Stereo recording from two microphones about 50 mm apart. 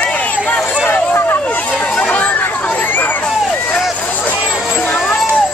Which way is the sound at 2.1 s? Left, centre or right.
Left.